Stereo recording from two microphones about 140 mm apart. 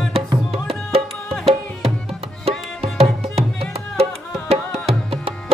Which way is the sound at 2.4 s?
45° right (ahead or behind).